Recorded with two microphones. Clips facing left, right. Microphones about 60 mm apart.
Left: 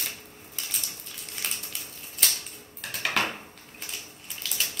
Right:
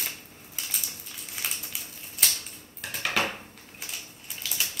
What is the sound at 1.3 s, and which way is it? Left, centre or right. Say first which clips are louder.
Typewriter: even; centre.